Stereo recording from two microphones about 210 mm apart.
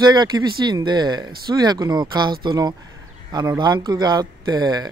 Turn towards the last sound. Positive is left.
turn(degrees=-20)  # may be behind; listen again after turning